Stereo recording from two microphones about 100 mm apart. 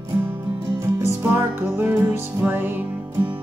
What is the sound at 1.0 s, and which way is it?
Music, 25° right (ahead or behind).